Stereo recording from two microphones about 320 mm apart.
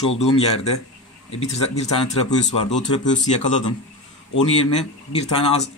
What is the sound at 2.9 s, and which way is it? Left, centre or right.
Speech, centre.